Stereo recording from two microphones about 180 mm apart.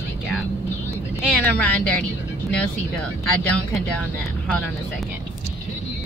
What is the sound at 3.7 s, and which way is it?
Speech, 5° left (ahead or behind).